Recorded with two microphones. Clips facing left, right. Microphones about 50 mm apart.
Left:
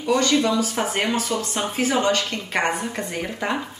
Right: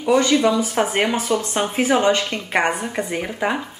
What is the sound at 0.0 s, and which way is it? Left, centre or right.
A woman's voice, centre.